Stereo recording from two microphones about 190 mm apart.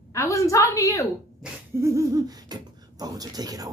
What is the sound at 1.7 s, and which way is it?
Speech, 15° right (ahead or behind).